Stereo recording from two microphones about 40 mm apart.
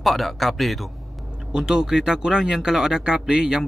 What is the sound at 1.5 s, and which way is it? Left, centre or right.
Speech, centre.